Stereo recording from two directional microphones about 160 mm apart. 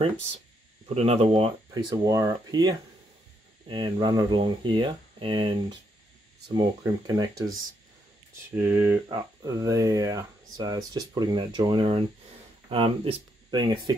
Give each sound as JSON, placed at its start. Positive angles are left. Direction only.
{"t": 0.8, "sound": "speech", "side_deg": -40}
{"t": 8.5, "sound": "speech", "side_deg": -10}
{"t": 9.4, "sound": "speech", "side_deg": -25}